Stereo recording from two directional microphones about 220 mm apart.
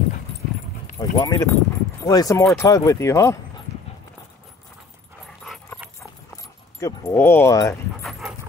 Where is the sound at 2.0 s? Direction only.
15° left (ahead or behind).